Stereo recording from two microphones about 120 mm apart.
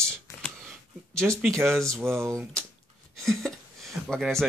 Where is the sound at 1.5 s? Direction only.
20° right (ahead or behind).